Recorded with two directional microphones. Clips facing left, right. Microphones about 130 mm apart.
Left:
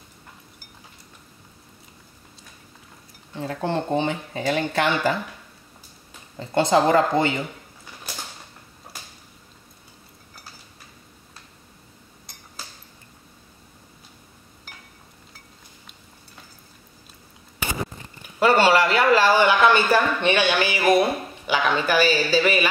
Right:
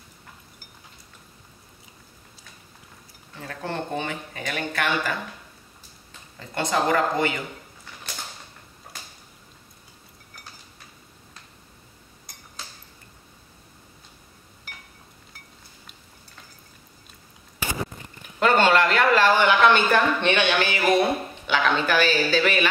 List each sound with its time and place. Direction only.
3.3 s speech: 25° left (ahead or behind)
6.3 s speech: 25° left (ahead or behind)
18.4 s a sound: 10° left (ahead or behind)